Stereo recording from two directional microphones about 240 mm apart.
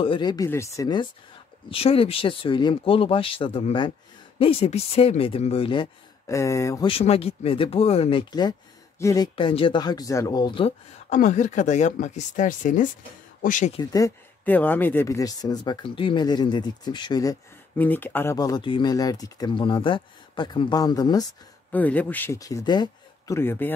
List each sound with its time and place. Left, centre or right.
0.0 s speech: centre
6.9 s speech: left
13.7 s speech: centre